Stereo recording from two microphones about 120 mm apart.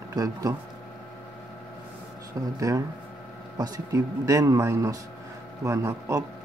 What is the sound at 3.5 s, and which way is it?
A man's voice, 35° right (ahead or behind).